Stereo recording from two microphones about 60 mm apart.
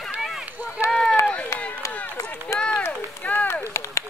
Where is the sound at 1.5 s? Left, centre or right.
Left.